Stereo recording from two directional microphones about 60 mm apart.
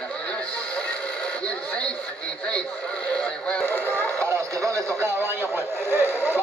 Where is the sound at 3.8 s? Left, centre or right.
Left.